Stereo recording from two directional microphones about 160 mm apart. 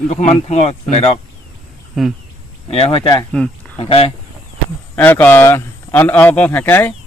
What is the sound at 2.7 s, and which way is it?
Speech, 35° left (ahead or behind).